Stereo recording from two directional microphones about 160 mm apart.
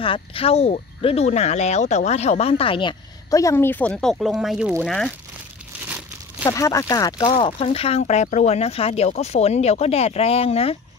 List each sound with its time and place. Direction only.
0.0 s speech: 35° left (ahead or behind); by 5.1 s centre (ahead or behind)
6.5 s speech: 20° left (ahead or behind); by 10.8 s 40° left (ahead or behind)